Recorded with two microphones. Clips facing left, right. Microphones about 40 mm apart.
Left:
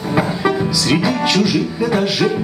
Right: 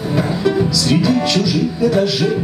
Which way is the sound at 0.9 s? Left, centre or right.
Left.